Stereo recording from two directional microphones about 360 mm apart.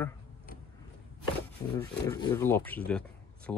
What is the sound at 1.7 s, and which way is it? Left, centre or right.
Speech, centre.